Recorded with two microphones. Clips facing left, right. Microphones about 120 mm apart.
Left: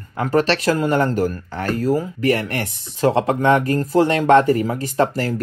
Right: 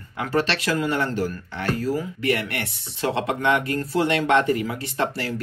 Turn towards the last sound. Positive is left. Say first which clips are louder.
# left 6 dB
turn(degrees=40)  # may be behind; listen again after turning